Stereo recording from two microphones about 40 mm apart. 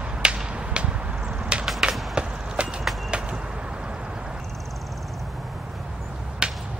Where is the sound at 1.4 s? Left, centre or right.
Right.